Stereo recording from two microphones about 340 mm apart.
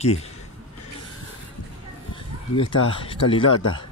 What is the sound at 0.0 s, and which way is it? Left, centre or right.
Speech, centre.